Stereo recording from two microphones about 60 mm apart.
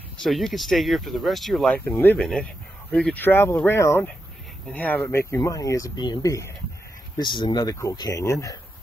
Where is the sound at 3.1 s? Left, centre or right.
Left.